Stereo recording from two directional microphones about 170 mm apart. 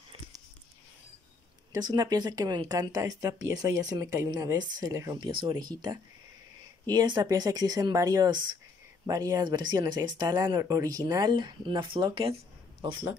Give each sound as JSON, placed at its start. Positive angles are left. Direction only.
{"t": 1.7, "sound": "speech", "side_deg": -25}